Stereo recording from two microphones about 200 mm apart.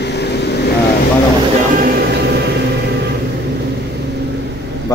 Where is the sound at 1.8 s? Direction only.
55° right (ahead or behind).